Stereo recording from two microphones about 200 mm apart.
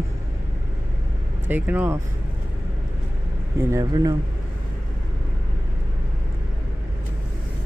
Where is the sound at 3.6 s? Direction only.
15° right (ahead or behind).